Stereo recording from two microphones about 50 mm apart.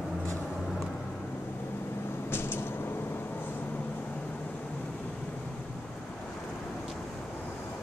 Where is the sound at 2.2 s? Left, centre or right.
Left.